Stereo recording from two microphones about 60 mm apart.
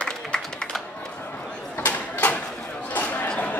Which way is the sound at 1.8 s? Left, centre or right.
Left.